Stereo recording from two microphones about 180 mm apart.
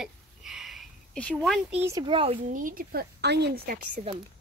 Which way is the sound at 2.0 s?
30° right (ahead or behind).